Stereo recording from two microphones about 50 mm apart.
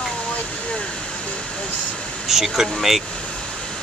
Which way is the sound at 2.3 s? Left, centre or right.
Centre.